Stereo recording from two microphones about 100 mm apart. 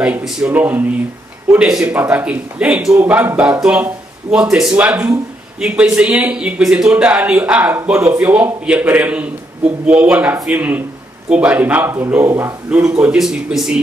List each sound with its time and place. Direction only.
0.2 s speech: 10° right (ahead or behind)
0.6 s speech: 20° right (ahead or behind)
3.0 s speech: 20° right (ahead or behind)
12.6 s speech: 10° right (ahead or behind)